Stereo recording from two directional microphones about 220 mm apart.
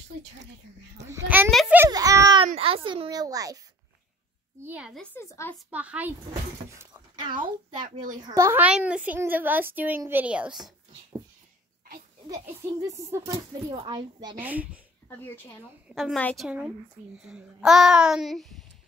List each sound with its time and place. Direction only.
1.0 s a woman's voice: 10° right (ahead or behind)
1.5 s children playing: 5° right (ahead or behind)
1.9 s a sound: 15° right (ahead or behind)
2.6 s a woman's voice: 25° right (ahead or behind); by 5.0 s 5° right (ahead or behind)
5.1 s speech: 10° left (ahead or behind)
5.7 s a woman's voice: 5° right (ahead or behind)
6.7 s shatter: 15° right (ahead or behind)
7.8 s a child's voice: 35° right (ahead or behind)
8.2 s a woman's voice: 15° right (ahead or behind)
12.3 s a woman's voice: 15° right (ahead or behind)
14.4 s a woman's voice: 5° right (ahead or behind)
15.9 s a child's voice: centre (ahead or behind)